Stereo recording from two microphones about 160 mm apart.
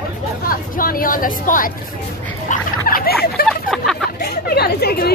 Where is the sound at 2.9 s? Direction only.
75° left (ahead or behind).